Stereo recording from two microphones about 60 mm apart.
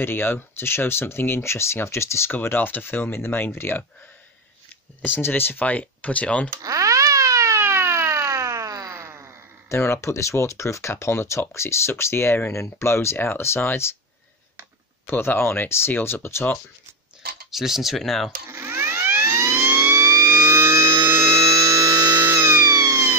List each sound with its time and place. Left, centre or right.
0.0 s speech: left
2.4 s speech: left
5.0 s speech: left
6.6 s a sound: right
7.5 s a sound: right
8.9 s wail: right
9.7 s speech: left
15.0 s speech: left
17.5 s speech: centre
18.5 s vehicle: right
19.6 s siren: right
20.2 s vehicle: right
22.1 s music: right
22.7 s emergency vehicle: right